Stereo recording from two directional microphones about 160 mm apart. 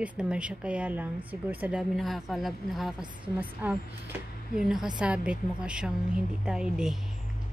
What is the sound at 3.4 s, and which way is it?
A woman's voice, 10° right (ahead or behind).